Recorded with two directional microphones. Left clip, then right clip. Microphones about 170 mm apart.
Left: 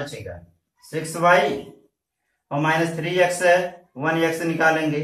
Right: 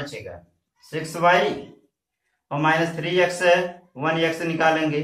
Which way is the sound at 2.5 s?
Centre (ahead or behind).